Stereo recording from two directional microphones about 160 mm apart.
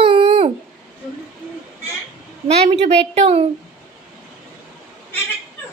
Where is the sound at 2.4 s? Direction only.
40° right (ahead or behind).